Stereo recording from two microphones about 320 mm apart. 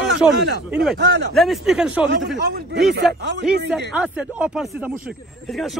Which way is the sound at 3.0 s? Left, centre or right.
Centre.